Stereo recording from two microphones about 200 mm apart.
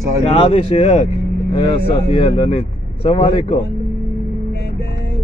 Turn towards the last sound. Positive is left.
turn(degrees=25)  # may be behind; listen again after turning